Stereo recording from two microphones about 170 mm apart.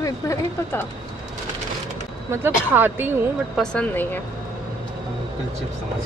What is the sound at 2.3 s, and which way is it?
Speech, 10° right (ahead or behind).